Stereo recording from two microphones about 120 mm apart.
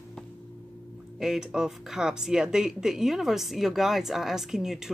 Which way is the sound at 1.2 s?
5° right (ahead or behind).